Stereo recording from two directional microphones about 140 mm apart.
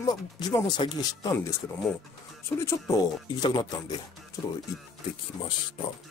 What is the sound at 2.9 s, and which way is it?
Speech, 30° left (ahead or behind).